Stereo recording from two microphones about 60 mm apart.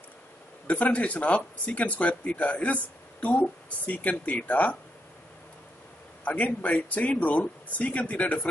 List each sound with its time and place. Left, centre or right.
0.7 s speech: left
6.2 s speech: left